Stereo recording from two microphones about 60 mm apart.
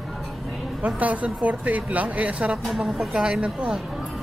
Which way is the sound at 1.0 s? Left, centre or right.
Right.